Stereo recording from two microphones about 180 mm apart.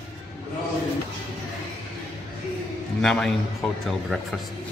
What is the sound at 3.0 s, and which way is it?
A man's voice, 5° left (ahead or behind).